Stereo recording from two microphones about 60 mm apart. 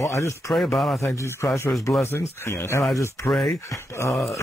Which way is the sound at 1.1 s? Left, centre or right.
Left.